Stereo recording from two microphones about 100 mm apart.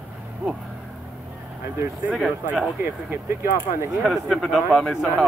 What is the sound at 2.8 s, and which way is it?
Speech, 20° right (ahead or behind).